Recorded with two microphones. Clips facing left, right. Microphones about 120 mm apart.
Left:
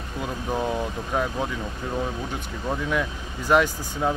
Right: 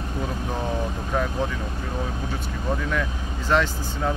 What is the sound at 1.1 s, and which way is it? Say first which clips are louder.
Speech: even; 15° left (ahead or behind).